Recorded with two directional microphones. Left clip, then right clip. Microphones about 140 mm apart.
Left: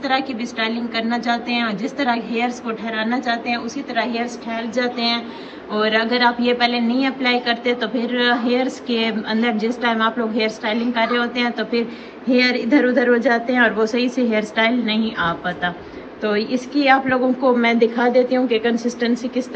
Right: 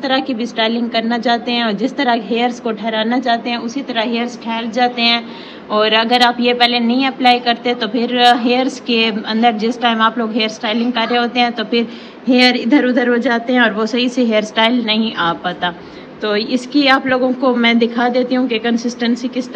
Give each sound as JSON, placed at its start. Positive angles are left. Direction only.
{"t": 0.0, "sound": "a woman's voice", "side_deg": -20}
{"t": 17.6, "sound": "a woman's voice", "side_deg": -15}